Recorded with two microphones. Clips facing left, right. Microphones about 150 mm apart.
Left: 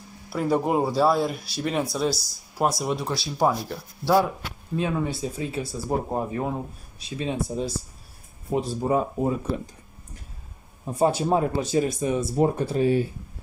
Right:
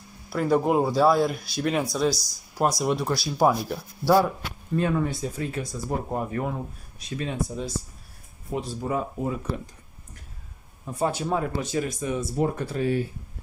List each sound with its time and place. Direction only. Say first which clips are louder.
0.3 s speech: right 1 dB; centre (ahead or behind)
3.4 s speech: right 2 dB; 10° right (ahead or behind)
4.7 s speech: right 1 dB; 5° left (ahead or behind)
5.9 s speech: left 3 dB; 20° left (ahead or behind)
10.9 s speech: left 4 dB; 30° left (ahead or behind)